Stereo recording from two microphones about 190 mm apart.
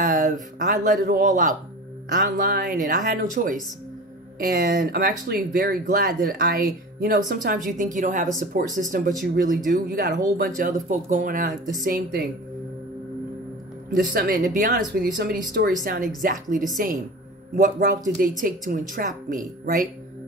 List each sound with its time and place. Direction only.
0.0 s speech: 45° right (ahead or behind)
13.8 s speech: 50° right (ahead or behind)